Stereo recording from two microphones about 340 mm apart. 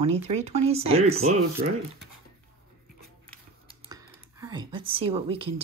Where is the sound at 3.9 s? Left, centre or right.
Centre.